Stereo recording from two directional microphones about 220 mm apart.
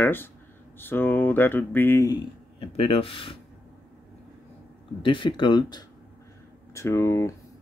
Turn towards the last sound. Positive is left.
turn(degrees=10)  # may be behind; listen again after turning